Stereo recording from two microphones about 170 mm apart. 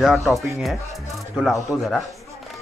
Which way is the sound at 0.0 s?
Centre (ahead or behind).